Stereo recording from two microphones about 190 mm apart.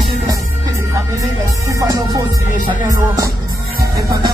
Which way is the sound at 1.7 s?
20° right (ahead or behind).